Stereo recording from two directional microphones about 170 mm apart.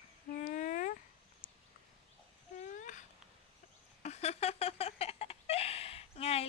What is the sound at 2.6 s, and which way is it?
Babbling, 45° left (ahead or behind).